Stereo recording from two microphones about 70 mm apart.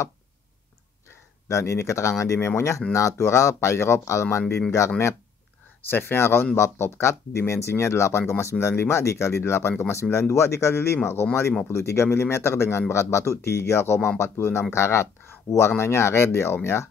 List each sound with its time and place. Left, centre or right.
1.5 s speech: left
5.9 s speech: left